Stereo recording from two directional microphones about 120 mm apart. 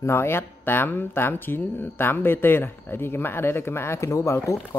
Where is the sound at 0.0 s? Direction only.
20° left (ahead or behind).